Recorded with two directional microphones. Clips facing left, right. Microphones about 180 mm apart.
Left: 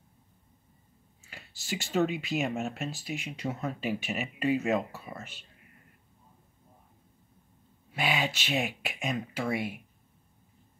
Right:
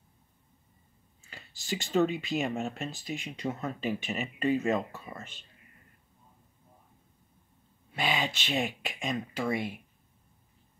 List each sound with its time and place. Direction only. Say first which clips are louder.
1.2 s speech: even; 5° left (ahead or behind)
7.9 s speech: left 1 dB; 5° left (ahead or behind)